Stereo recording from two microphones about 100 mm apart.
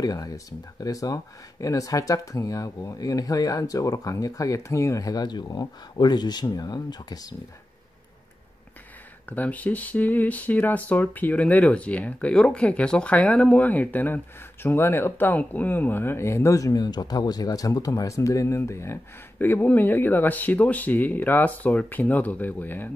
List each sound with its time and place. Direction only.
0.0 s speech: 40° left (ahead or behind)
9.3 s speech: 15° left (ahead or behind)